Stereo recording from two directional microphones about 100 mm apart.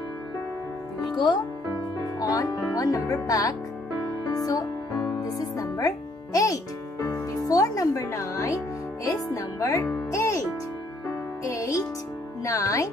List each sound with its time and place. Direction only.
2.1 s music: 35° left (ahead or behind)
2.7 s speech: 35° left (ahead or behind)
4.3 s music: 40° left (ahead or behind)
5.4 s speech: 35° left (ahead or behind)
11.4 s speech: 30° left (ahead or behind)